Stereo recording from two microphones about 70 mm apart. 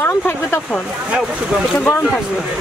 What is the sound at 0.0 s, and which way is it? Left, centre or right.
Speech, left.